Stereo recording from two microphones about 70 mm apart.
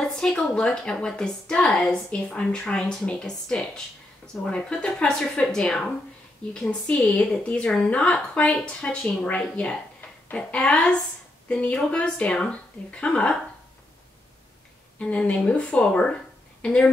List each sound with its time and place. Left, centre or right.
0.0 s a woman's voice: centre
15.0 s a woman's voice: centre